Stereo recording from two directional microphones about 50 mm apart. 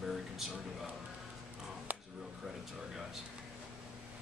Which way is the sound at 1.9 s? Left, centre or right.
Right.